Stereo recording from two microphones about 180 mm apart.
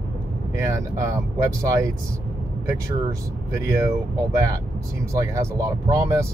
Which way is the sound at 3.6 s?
15° right (ahead or behind).